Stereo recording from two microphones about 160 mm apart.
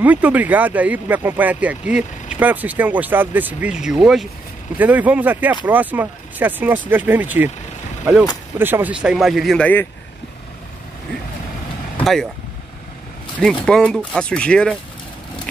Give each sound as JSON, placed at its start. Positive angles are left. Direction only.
{"t": 0.0, "sound": "speech", "side_deg": -10}
{"t": 8.5, "sound": "speech", "side_deg": -15}
{"t": 12.0, "sound": "speech", "side_deg": 0}
{"t": 13.7, "sound": "speech", "side_deg": 0}